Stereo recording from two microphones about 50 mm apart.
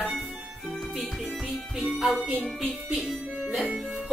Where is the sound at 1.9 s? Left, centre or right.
Centre.